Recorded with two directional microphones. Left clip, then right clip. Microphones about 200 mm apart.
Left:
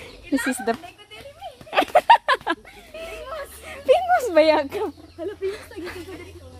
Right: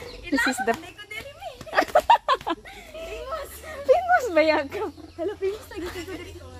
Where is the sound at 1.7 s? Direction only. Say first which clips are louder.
Left 3 dB; 25° left (ahead or behind).